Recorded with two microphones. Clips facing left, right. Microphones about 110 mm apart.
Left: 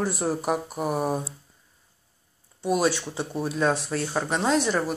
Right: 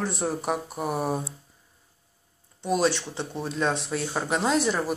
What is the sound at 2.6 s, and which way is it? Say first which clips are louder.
Speech: left 1 dB; 10° left (ahead or behind).